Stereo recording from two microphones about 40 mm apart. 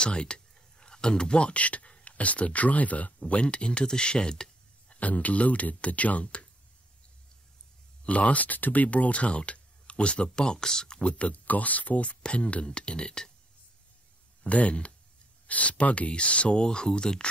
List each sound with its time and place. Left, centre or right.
0.0 s speech: left
3.2 s speech: left
4.9 s speech: left
8.0 s speech: left; by 11.1 s centre
11.1 s speech: left; by 13.3 s centre
14.4 s speech: left
16.6 s speech: centre